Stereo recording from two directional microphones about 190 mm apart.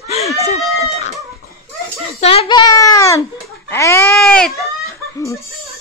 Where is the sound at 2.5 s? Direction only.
20° left (ahead or behind).